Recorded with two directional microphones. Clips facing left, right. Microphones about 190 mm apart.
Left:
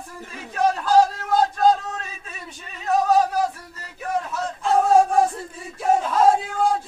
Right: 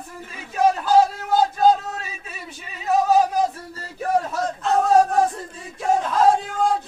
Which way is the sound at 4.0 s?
35° right (ahead or behind).